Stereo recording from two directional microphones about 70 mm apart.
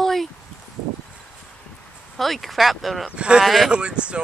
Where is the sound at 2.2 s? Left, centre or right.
Centre.